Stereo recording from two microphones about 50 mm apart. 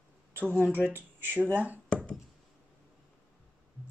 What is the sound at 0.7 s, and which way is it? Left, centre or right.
Speech, right.